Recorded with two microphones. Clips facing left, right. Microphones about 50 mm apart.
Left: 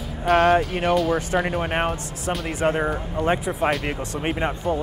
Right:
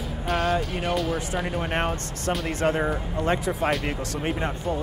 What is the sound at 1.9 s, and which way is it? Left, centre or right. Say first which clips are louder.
Speech: left 1 dB; centre.